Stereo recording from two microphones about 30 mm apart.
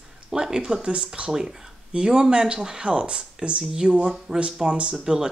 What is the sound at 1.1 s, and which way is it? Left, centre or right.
Speech, right.